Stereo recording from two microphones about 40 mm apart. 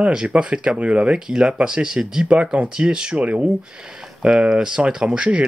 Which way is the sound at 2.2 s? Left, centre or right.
Right.